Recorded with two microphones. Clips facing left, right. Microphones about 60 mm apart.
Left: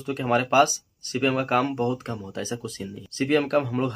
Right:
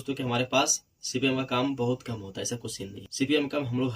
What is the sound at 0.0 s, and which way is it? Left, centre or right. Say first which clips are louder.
Speech: left 5 dB; left.